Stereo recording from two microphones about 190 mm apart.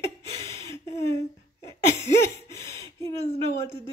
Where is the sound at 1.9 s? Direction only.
15° left (ahead or behind).